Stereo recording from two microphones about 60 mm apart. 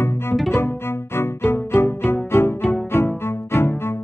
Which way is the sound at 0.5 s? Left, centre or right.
Left.